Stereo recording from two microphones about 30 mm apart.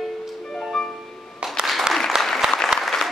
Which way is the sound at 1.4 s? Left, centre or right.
Right.